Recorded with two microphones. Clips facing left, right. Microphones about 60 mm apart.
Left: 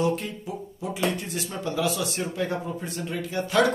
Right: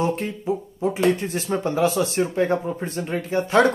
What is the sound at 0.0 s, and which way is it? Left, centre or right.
Speech, right.